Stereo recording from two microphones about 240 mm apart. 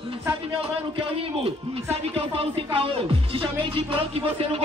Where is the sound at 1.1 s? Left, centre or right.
Right.